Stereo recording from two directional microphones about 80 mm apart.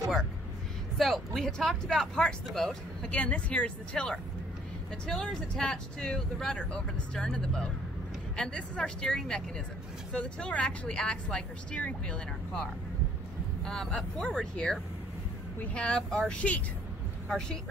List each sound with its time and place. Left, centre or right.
0.9 s speech: centre
13.7 s speech: centre